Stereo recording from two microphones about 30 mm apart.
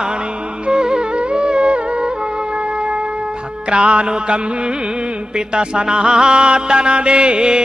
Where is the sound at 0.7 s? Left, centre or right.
Right.